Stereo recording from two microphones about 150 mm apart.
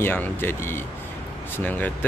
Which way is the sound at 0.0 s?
15° left (ahead or behind).